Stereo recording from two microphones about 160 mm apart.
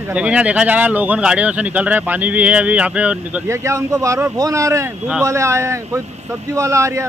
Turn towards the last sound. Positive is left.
turn(degrees=-20)  # may be behind; listen again after turning